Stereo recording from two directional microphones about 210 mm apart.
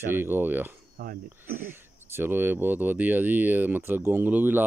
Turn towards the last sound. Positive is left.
turn(degrees=-10)  # may be behind; listen again after turning